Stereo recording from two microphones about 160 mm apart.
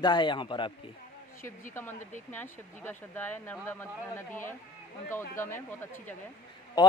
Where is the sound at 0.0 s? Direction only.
30° left (ahead or behind).